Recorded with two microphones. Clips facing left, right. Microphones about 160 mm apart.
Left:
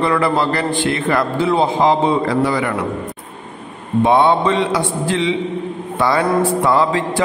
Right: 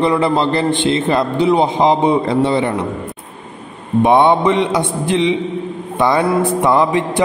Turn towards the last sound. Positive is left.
turn(degrees=-20)  # may be behind; listen again after turning